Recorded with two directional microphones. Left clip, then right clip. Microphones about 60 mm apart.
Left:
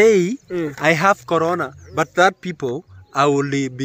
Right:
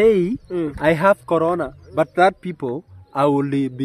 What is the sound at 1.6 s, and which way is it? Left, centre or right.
Speech, centre.